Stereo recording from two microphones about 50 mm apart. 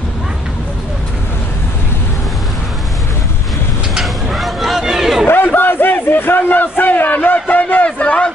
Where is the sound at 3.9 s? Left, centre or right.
Centre.